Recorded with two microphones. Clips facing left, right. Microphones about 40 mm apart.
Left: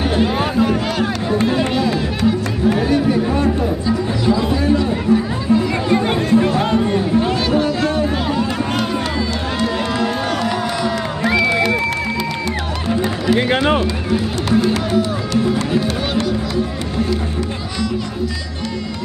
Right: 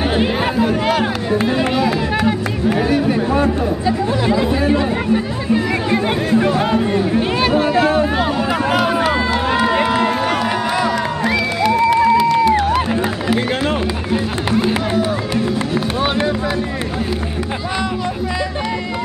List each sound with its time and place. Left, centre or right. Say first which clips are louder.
0.1 s a sound: even; centre
0.6 s speech: right 2 dB; centre
3.8 s chatter: right 2 dB; right
5.9 s music: left 2 dB; centre
7.2 s a sound: even; right
8.8 s run: right 4 dB; centre
10.9 s crowd: right 1 dB; centre
11.9 s a sound: right 9 dB; centre
12.4 s music: right 9 dB; centre
14.1 s run: left 1 dB; right